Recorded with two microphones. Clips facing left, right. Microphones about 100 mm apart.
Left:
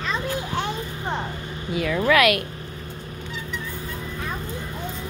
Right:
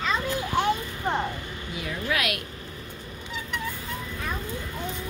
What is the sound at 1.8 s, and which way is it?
Speech, 90° left.